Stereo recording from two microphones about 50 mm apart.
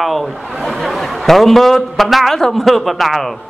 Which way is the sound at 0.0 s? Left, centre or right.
Centre.